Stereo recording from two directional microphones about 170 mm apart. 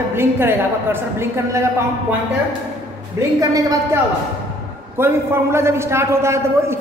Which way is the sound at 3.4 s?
20° right (ahead or behind).